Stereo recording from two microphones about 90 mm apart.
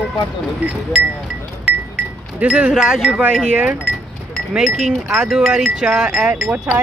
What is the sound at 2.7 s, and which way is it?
Wind chime, 5° right (ahead or behind).